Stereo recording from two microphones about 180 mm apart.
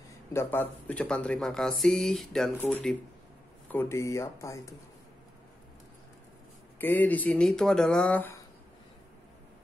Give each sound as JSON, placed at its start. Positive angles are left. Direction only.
{"t": 0.3, "sound": "speech", "side_deg": 15}
{"t": 6.8, "sound": "speech", "side_deg": 10}